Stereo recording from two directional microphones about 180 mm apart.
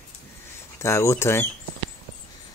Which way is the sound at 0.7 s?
15° left (ahead or behind).